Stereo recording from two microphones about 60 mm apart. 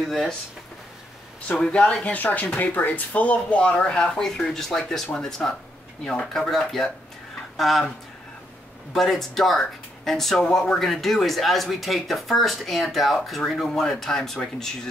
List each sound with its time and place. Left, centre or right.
1.6 s speech: centre
2.4 s speech: left; by 6.5 s centre
6.5 s speech: centre
8.9 s speech: centre